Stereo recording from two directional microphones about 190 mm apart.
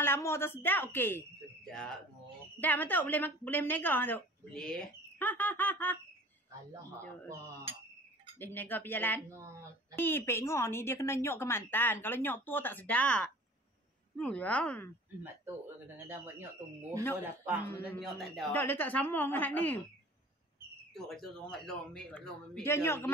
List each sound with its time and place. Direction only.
0.0 s a woman's voice: 15° left (ahead or behind)
8.4 s a woman's voice: 10° left (ahead or behind)
17.6 s a woman's voice: 10° left (ahead or behind)
18.1 s a woman's voice: centre (ahead or behind)
20.9 s a man's voice: centre (ahead or behind)